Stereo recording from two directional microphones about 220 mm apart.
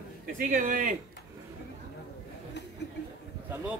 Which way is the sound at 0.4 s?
35° right (ahead or behind).